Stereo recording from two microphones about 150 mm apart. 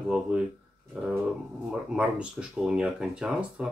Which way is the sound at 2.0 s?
5° right (ahead or behind).